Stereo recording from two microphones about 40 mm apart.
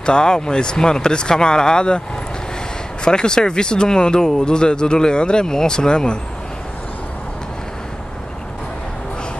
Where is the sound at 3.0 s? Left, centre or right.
Centre.